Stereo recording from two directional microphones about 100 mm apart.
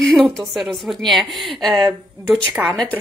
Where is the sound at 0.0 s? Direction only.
5° left (ahead or behind).